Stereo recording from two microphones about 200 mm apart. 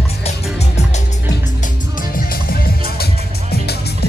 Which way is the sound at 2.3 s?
50° left (ahead or behind).